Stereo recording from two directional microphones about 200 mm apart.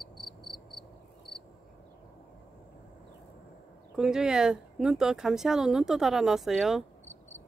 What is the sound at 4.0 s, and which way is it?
Speech, 5° right (ahead or behind).